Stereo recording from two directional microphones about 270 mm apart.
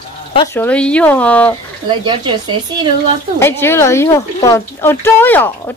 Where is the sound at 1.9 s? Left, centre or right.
Centre.